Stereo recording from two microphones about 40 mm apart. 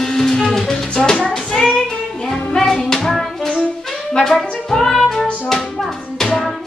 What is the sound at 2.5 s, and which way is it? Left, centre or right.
Music, centre.